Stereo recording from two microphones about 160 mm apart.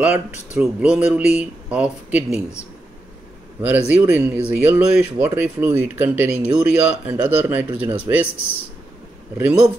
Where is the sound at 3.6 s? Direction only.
10° right (ahead or behind).